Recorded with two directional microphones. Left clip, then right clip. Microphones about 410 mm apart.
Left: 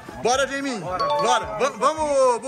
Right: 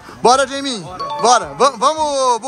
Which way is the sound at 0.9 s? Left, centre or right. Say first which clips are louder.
Left 5 dB; centre.